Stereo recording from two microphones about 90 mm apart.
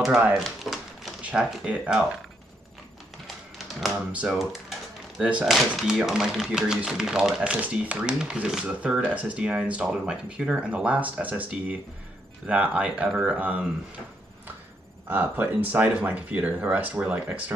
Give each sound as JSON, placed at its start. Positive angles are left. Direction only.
{"t": 0.4, "sound": "a sound", "side_deg": -5}
{"t": 1.2, "sound": "speech", "side_deg": -10}
{"t": 3.5, "sound": "speech", "side_deg": -5}
{"t": 4.3, "sound": "typewriter", "side_deg": -5}
{"t": 5.4, "sound": "speech", "side_deg": 0}
{"t": 15.0, "sound": "speech", "side_deg": -20}